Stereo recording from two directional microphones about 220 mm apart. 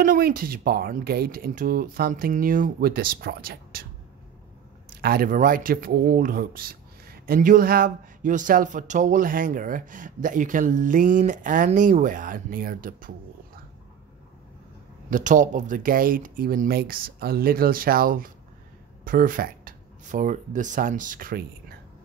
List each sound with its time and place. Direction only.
0.0 s speech: 40° right (ahead or behind)
4.8 s speech: 45° right (ahead or behind)
15.0 s speech: 35° right (ahead or behind)